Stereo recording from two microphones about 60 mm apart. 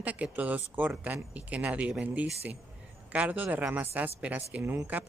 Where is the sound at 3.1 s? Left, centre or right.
Right.